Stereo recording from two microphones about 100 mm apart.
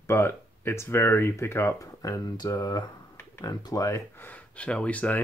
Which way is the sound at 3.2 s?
30° left (ahead or behind).